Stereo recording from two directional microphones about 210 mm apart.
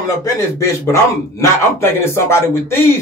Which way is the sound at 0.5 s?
15° left (ahead or behind).